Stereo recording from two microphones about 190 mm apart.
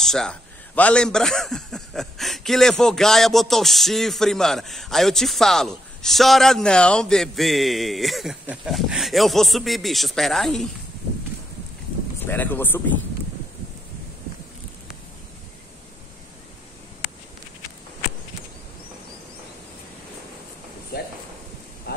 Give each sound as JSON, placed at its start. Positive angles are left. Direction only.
{"t": 0.0, "sound": "a man's voice", "side_deg": 0}
{"t": 12.2, "sound": "speech", "side_deg": 10}
{"t": 20.9, "sound": "a sound", "side_deg": 55}